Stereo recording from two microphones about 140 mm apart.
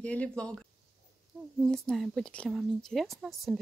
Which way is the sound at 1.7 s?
5° left (ahead or behind).